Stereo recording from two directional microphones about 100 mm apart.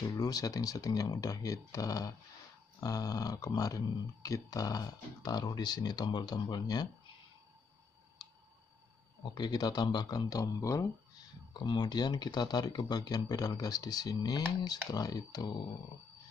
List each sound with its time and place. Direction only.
0.2 s speech: 40° left (ahead or behind)
8.2 s tick: 45° left (ahead or behind)
9.2 s speech: 45° left (ahead or behind)
11.6 s speech: 50° left (ahead or behind)